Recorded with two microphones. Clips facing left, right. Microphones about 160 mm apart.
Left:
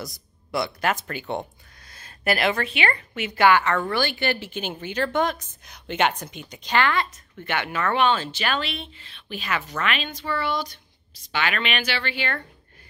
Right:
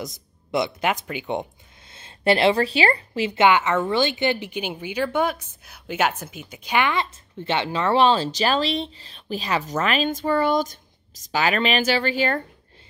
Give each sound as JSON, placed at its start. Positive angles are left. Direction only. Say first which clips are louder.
{"t": 0.0, "sound": "speech", "louder": "right 3 dB", "side_deg": -20}